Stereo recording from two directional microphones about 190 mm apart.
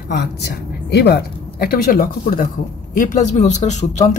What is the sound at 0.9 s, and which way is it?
Speech, 60° left (ahead or behind).